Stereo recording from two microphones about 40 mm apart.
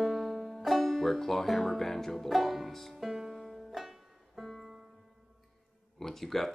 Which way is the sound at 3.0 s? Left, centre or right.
Centre.